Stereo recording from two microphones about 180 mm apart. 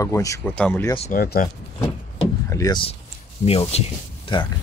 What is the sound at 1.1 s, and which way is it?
Speech, 55° left (ahead or behind).